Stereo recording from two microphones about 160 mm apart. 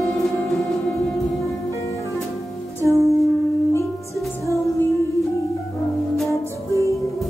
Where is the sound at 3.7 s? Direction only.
20° left (ahead or behind).